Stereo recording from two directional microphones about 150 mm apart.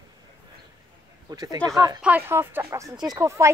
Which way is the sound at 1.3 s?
25° right (ahead or behind).